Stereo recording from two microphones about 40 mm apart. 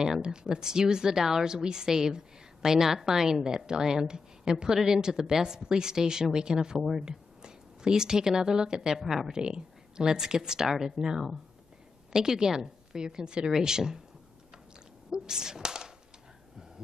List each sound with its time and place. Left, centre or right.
0.0 s speech: centre
8.9 s speech: centre
9.4 s speech: centre
15.0 s a sound: centre